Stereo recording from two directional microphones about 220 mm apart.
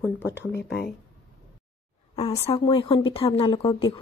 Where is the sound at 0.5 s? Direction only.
50° left (ahead or behind).